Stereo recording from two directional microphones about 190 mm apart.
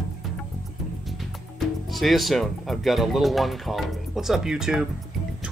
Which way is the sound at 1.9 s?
Centre (ahead or behind).